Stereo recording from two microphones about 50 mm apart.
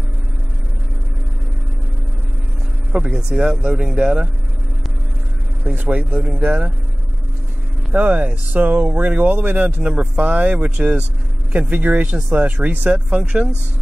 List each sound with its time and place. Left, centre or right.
2.9 s speech: right
5.6 s speech: right
7.9 s speech: right
11.5 s speech: right